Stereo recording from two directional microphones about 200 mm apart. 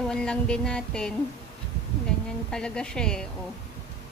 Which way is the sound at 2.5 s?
5° left (ahead or behind).